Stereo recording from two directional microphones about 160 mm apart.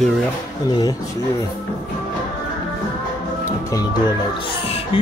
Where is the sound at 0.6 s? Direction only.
25° left (ahead or behind).